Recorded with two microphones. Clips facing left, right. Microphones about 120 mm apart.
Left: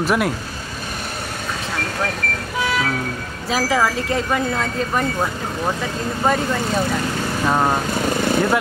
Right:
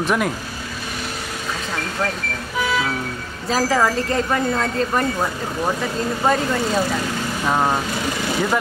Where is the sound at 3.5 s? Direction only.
Centre (ahead or behind).